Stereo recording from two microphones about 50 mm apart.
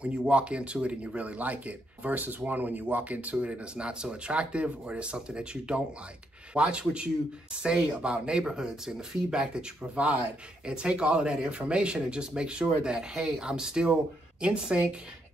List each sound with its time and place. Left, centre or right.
0.3 s speech: right